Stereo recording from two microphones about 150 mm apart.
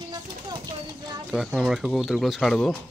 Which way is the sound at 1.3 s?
5° right (ahead or behind).